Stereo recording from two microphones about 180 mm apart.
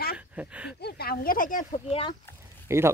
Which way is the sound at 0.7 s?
60° left (ahead or behind).